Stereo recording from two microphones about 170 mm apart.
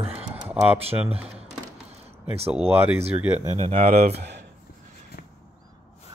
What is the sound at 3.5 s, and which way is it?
Speech, 35° right (ahead or behind).